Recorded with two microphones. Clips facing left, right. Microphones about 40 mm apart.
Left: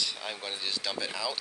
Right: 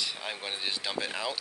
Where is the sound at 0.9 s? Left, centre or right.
Right.